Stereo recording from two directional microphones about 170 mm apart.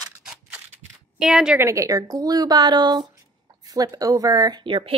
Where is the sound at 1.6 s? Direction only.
20° right (ahead or behind).